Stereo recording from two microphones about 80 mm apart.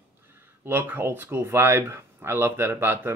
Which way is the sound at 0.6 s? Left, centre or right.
Right.